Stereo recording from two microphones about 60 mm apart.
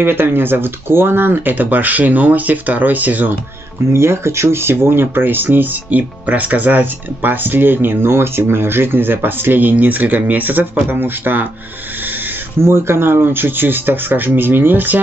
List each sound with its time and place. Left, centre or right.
0.0 s speech: right
3.9 s speech: right
12.5 s speech: right